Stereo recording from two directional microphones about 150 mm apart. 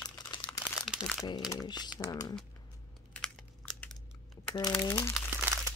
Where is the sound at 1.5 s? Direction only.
25° left (ahead or behind).